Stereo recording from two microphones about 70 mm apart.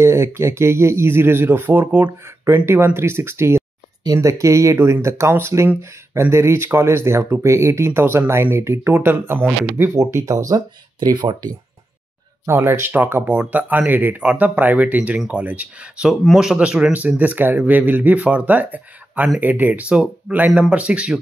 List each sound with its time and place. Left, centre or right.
0.0 s speech: right
2.2 s speech: right
4.2 s speech: right
4.7 s speech: right
9.9 s speech: right
11.0 s speech: right
12.4 s speech: right; by 21.1 s centre